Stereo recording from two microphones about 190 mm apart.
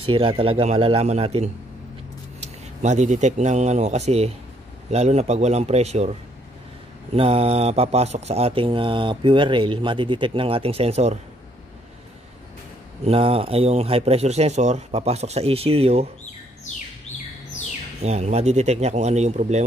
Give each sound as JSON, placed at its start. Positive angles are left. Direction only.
{"t": 0.1, "sound": "speech", "side_deg": -25}
{"t": 13.0, "sound": "speech", "side_deg": -30}
{"t": 18.0, "sound": "speech", "side_deg": -35}